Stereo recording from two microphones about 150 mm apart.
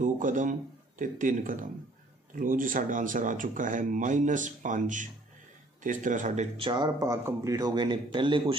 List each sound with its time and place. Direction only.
0.0 s speech: 60° right (ahead or behind)
6.5 s a man's voice: 35° right (ahead or behind)